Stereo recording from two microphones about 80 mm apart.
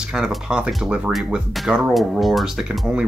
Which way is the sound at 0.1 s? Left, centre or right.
Centre.